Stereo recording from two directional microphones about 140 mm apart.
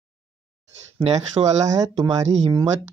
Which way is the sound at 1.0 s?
50° right (ahead or behind).